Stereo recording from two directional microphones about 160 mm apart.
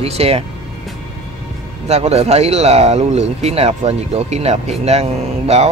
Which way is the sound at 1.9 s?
40° right (ahead or behind).